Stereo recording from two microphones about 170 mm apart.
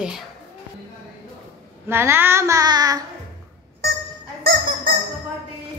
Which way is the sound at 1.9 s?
15° right (ahead or behind).